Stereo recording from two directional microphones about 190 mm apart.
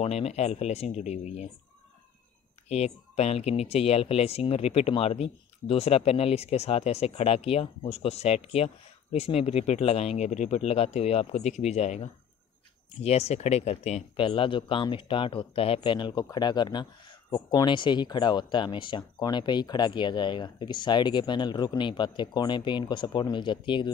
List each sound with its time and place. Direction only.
0.0 s speech: 35° left (ahead or behind)
2.7 s speech: 35° left (ahead or behind)